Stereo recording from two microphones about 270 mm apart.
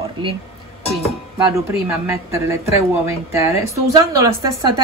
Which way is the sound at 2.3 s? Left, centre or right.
Centre.